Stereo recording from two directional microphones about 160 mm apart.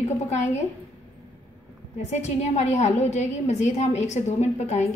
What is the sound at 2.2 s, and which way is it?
A woman's voice, 45° left (ahead or behind).